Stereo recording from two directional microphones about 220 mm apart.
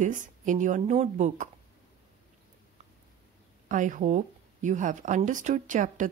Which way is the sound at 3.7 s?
35° right (ahead or behind).